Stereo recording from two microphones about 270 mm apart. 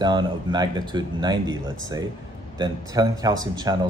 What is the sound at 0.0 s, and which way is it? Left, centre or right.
Speech, centre.